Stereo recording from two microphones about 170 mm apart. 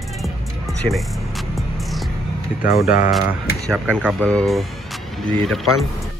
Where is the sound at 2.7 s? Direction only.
55° left (ahead or behind).